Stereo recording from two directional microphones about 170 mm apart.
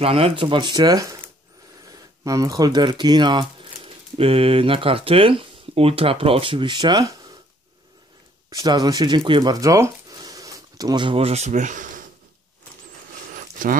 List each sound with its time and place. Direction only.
0.0 s speech: 35° right (ahead or behind)
8.5 s speech: 20° right (ahead or behind); by 12.0 s 50° right (ahead or behind)
13.3 s a sound: 50° right (ahead or behind)